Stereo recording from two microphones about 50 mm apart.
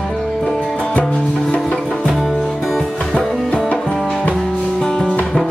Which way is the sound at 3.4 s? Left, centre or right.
Left.